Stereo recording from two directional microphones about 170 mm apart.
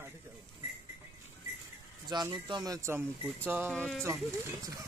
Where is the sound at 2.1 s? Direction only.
25° right (ahead or behind).